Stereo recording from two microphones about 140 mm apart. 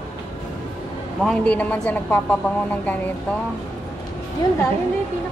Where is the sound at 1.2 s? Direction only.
10° left (ahead or behind).